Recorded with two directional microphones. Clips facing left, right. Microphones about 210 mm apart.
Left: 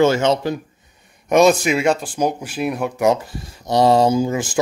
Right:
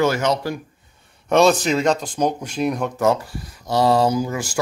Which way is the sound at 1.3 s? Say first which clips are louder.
Left 2 dB; 10° left (ahead or behind).